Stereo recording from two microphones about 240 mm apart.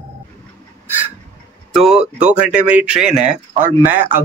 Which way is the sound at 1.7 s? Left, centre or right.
Centre.